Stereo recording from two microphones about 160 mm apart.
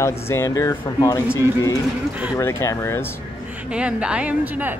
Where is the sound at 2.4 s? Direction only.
15° left (ahead or behind).